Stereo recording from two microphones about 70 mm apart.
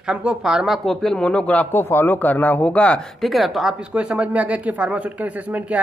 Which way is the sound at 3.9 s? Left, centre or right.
Centre.